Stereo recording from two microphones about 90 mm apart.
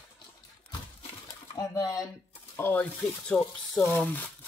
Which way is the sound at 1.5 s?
45° left (ahead or behind).